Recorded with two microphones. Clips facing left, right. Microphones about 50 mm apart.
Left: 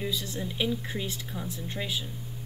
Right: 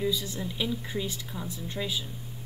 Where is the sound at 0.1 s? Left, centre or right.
Centre.